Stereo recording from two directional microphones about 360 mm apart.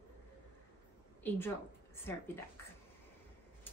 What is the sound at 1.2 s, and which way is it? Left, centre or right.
Speech, centre.